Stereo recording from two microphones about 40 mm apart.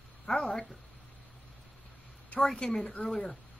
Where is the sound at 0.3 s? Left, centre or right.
Centre.